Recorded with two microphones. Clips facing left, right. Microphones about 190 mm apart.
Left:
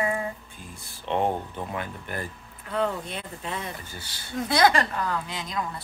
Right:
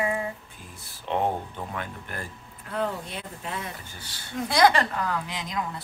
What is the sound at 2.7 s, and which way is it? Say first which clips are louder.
Speech: left 2 dB; 5° right (ahead or behind).